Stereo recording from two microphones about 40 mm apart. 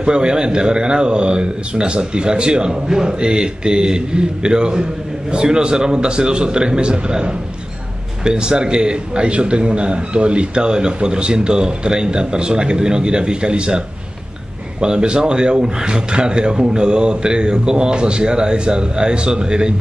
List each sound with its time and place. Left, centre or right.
0.0 s a man's voice: right